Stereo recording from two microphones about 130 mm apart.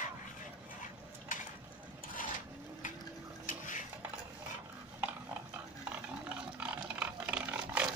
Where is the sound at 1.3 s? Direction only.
90° left.